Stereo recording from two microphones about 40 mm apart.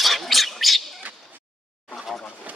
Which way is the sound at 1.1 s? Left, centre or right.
Right.